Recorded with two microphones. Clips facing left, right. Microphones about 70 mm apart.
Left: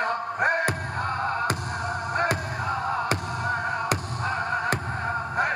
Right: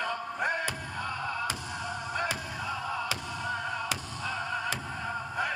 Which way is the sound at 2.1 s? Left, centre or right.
Left.